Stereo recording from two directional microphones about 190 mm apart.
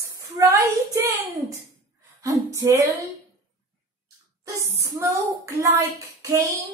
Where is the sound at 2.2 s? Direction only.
15° right (ahead or behind).